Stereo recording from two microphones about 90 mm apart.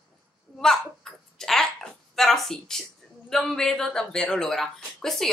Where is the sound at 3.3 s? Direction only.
5° left (ahead or behind).